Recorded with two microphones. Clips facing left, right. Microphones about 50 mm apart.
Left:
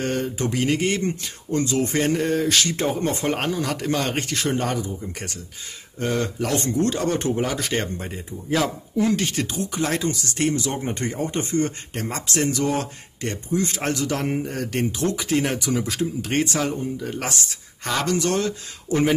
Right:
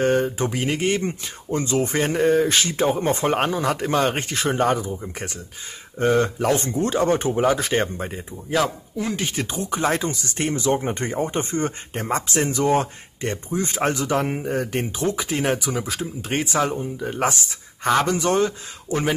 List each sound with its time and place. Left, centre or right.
0.0 s speech: right; by 9.1 s centre
9.1 s speech: centre
18.9 s speech: centre